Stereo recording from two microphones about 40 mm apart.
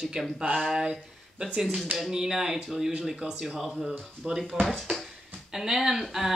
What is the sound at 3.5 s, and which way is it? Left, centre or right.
Speech, centre.